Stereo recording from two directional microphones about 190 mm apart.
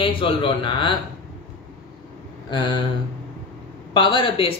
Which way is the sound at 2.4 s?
25° left (ahead or behind).